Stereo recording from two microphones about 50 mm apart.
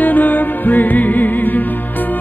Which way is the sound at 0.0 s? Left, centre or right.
Left.